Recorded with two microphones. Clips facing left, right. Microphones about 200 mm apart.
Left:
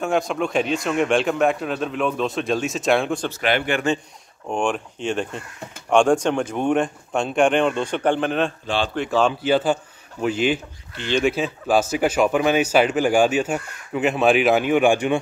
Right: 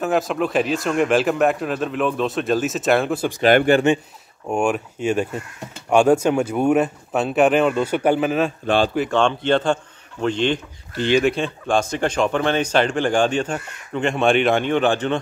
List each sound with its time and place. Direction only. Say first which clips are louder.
0.0 s speech: right 1 dB; centre (ahead or behind)
3.3 s a man's voice: right 9 dB; 40° right (ahead or behind)
4.5 s speech: right 3 dB; 10° right (ahead or behind)
8.6 s speech: right 5 dB; 50° right (ahead or behind)
8.9 s speech: right 1 dB; centre (ahead or behind)